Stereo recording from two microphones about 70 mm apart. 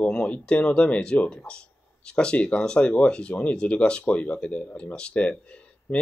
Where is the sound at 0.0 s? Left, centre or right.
Centre.